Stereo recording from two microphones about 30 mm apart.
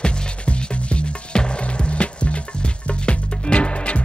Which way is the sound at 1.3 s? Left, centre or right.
Left.